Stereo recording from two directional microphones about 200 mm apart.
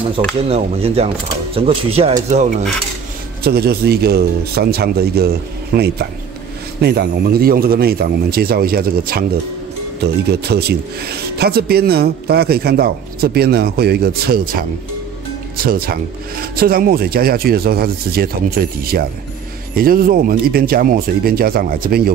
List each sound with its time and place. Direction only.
0.5 s speech: 30° right (ahead or behind)
3.4 s a man's voice: 50° right (ahead or behind)